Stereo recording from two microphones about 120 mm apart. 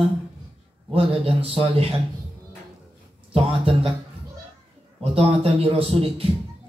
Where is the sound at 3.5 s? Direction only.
50° right (ahead or behind).